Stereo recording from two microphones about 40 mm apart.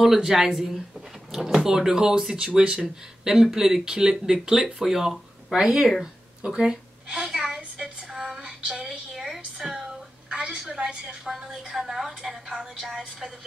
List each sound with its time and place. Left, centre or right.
0.0 s speech: centre
3.4 s speech: centre
7.2 s a sound: centre
7.7 s female singing: centre
8.5 s a sound: centre
10.3 s a woman's voice: centre
11.2 s speech: centre